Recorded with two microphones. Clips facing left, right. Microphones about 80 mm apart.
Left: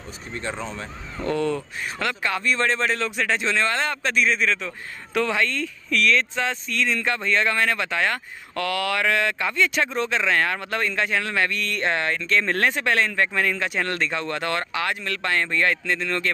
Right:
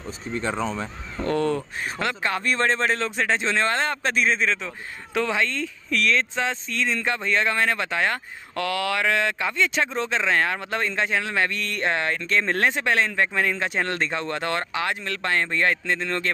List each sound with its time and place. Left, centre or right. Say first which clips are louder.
1.3 s speech: right 1 dB; right
2.0 s speech: even; right
4.6 s speech: left 1 dB; centre
11.8 s speech: even; centre